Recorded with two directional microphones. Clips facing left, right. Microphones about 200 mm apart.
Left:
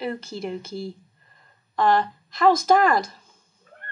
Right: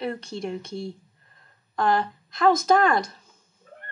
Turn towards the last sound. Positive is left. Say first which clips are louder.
# left 1 dB
turn(degrees=0)  # may be behind; listen again after turning